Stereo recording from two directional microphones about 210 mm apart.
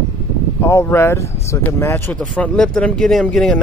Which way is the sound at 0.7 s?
15° left (ahead or behind).